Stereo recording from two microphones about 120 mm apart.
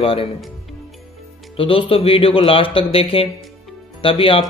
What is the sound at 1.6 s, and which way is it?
Speech, 45° left (ahead or behind).